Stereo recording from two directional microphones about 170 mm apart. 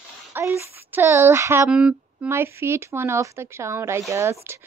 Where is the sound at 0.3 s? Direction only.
15° right (ahead or behind).